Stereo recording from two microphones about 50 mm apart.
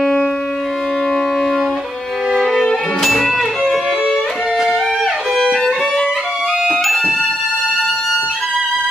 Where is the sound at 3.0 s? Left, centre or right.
Centre.